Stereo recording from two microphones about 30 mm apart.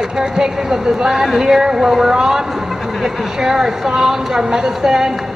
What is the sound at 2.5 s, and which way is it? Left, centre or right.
Speech, centre.